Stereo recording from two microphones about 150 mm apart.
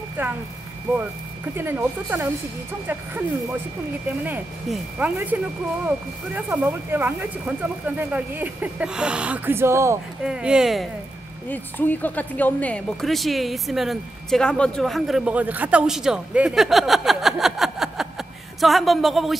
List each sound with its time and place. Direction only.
0.2 s speech: 10° right (ahead or behind)
1.5 s speech: 15° right (ahead or behind)
4.6 s speech: 10° right (ahead or behind)
10.2 s speech: 5° right (ahead or behind)
11.4 s speech: 10° left (ahead or behind)